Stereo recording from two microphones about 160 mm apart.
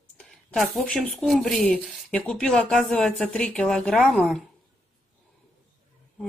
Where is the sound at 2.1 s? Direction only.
5° left (ahead or behind).